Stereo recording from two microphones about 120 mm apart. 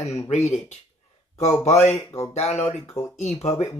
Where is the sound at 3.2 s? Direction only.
60° left (ahead or behind).